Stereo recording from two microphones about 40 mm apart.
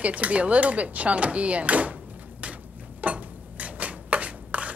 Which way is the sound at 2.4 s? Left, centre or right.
Right.